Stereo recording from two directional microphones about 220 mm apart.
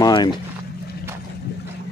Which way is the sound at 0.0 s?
20° left (ahead or behind).